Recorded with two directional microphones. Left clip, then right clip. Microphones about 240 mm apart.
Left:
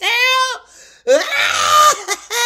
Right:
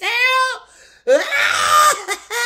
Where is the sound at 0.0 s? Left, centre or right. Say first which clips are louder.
Left 2 dB; left.